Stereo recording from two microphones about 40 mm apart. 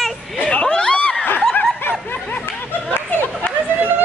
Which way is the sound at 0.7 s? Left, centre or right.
Left.